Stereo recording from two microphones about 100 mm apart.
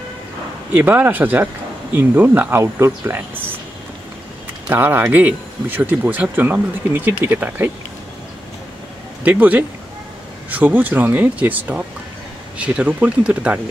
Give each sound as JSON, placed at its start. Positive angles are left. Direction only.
{"t": 0.7, "sound": "speech", "side_deg": -20}
{"t": 4.6, "sound": "speech", "side_deg": -20}
{"t": 9.2, "sound": "speech", "side_deg": -15}